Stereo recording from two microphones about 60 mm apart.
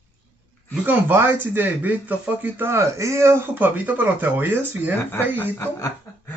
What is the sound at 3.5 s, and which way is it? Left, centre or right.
Speech, right.